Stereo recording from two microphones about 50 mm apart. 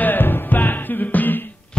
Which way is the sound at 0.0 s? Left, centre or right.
Left.